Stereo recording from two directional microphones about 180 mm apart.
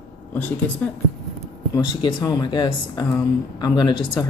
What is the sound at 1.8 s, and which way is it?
Speech, 25° left (ahead or behind).